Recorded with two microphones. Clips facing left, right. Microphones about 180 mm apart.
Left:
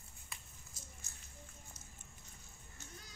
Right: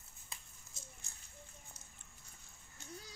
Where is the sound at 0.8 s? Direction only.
25° right (ahead or behind).